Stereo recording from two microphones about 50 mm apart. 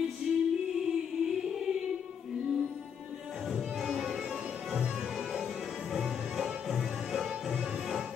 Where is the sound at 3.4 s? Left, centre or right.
Centre.